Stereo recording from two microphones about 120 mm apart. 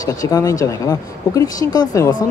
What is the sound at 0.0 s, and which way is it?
Speech, 30° left (ahead or behind).